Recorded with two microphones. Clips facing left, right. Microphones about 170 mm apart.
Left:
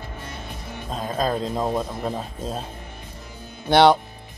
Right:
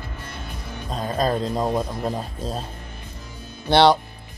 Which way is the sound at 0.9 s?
Centre (ahead or behind).